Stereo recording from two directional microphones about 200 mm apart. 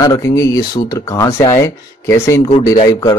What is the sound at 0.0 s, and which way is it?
A man's voice, 15° left (ahead or behind).